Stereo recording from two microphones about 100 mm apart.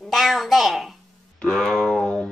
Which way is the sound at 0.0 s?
Centre (ahead or behind).